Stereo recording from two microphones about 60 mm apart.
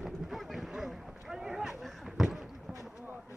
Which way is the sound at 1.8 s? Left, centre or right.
Centre.